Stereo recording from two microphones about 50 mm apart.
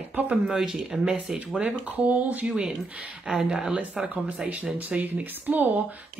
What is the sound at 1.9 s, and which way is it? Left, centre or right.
Speech, right.